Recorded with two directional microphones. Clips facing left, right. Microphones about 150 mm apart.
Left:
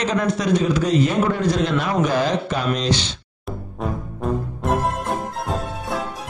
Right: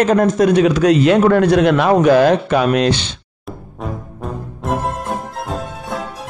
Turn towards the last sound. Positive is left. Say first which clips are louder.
# right 1 dB
turn(degrees=0)  # may be behind; listen again after turning